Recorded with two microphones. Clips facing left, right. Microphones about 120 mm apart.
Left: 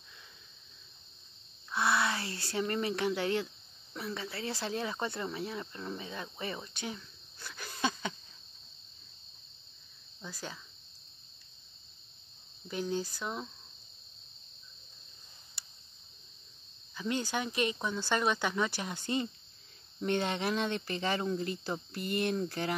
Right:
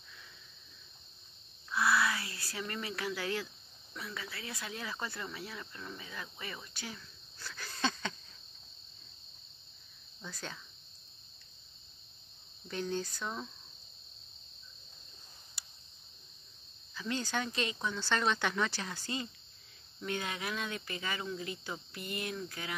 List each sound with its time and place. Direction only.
1.7 s a sound: 25° left (ahead or behind)
3.9 s speech: 30° left (ahead or behind); by 8.1 s 15° left (ahead or behind)
10.2 s speech: 10° left (ahead or behind)
12.6 s speech: 10° left (ahead or behind)
16.9 s speech: 20° left (ahead or behind); by 22.8 s 40° left (ahead or behind)